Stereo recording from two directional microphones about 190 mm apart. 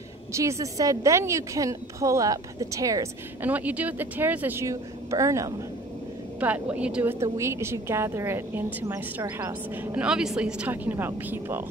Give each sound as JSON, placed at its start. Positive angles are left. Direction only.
{"t": 0.4, "sound": "a woman's voice", "side_deg": -15}
{"t": 9.9, "sound": "a woman's voice", "side_deg": -5}